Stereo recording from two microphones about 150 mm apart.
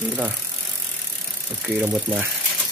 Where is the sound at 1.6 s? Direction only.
10° right (ahead or behind).